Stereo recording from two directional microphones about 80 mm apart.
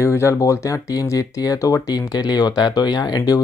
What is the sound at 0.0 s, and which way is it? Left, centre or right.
Speech, left.